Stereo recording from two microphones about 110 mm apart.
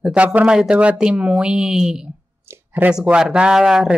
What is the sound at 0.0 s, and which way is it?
Speech, 10° right (ahead or behind).